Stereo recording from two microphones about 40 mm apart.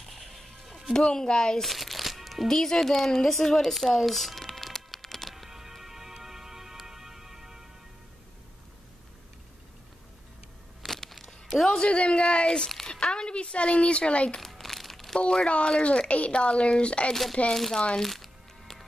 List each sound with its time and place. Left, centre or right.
0.0 s music: centre
0.9 s speech: centre
1.6 s music: centre
2.4 s speech: centre
3.9 s music: centre
5.5 s music: centre
10.8 s a sound: centre
11.7 s speech: left
12.8 s speech: centre
14.4 s crumpling: centre
15.4 s a woman's voice: left
17.1 s speech: centre
18.0 s music: centre